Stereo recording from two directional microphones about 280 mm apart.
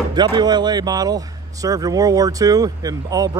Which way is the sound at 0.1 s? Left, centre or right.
Centre.